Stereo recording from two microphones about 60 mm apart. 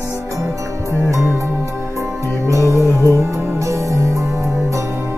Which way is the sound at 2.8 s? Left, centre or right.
Left.